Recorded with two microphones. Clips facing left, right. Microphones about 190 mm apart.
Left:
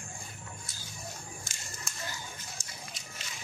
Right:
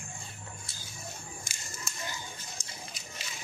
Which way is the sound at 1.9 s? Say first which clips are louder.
Right 1 dB; centre (ahead or behind).